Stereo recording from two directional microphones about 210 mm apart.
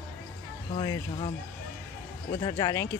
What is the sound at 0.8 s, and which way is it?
Speech, 20° left (ahead or behind).